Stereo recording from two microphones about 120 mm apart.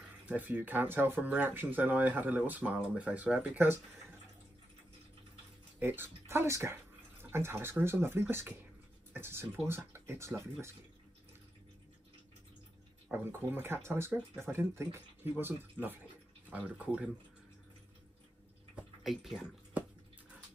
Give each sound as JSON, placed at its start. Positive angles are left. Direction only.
{"t": 0.3, "sound": "speech", "side_deg": -15}
{"t": 5.8, "sound": "speech", "side_deg": -20}
{"t": 13.1, "sound": "speech", "side_deg": -20}
{"t": 18.8, "sound": "a sound", "side_deg": -5}